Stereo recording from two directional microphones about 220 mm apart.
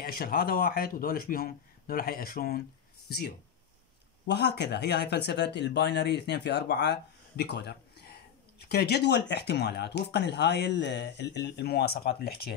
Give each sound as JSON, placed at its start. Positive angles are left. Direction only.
{"t": 0.0, "sound": "speech", "side_deg": 40}